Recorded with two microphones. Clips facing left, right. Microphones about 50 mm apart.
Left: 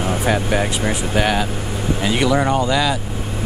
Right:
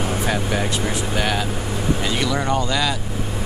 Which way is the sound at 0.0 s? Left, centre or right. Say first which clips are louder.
Left 3 dB; centre.